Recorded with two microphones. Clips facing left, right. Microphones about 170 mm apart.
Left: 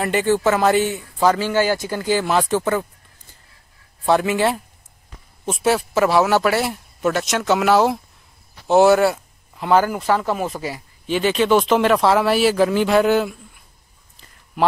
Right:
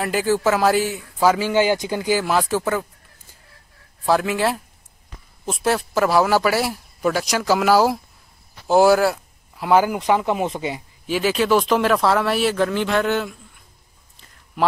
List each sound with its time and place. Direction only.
0.0 s speech: centre (ahead or behind)
4.0 s speech: centre (ahead or behind)
8.6 s a sound: centre (ahead or behind)
9.7 s speech: 10° right (ahead or behind)
11.1 s speech: 5° right (ahead or behind)